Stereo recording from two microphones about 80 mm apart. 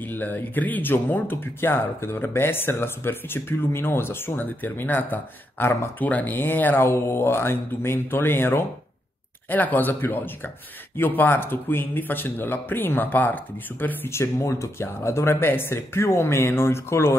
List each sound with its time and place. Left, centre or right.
0.0 s speech: left